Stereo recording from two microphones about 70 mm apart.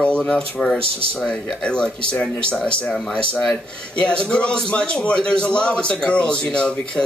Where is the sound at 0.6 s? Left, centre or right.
Centre.